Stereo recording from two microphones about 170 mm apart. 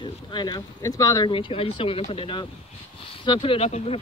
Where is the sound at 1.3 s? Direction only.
30° left (ahead or behind).